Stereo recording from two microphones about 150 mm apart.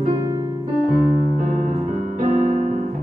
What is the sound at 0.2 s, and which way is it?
Piano, 20° right (ahead or behind).